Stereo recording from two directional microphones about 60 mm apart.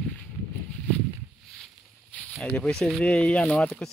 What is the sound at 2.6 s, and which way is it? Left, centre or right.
Speech, centre.